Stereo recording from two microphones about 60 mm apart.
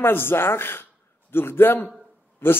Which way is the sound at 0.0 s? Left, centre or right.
Left.